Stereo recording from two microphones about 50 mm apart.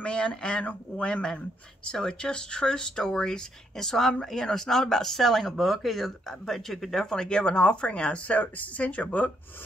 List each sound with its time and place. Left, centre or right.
0.0 s speech: left